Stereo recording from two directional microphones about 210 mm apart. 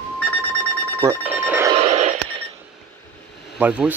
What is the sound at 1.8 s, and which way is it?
Radio, 30° right (ahead or behind).